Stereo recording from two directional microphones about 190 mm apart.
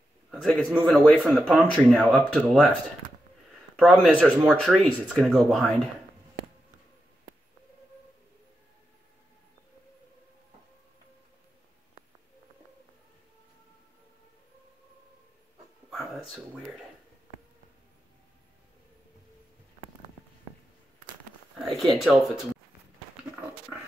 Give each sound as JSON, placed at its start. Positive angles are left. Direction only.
{"t": 0.3, "sound": "speech", "side_deg": 0}
{"t": 3.7, "sound": "speech", "side_deg": 0}
{"t": 16.5, "sound": "a sound", "side_deg": -5}
{"t": 21.9, "sound": "speech", "side_deg": 0}